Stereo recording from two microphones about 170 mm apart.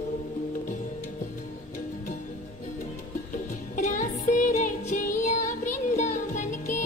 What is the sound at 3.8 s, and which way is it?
Music, 50° left (ahead or behind).